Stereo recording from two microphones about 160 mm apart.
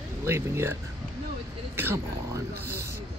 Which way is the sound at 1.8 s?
15° right (ahead or behind).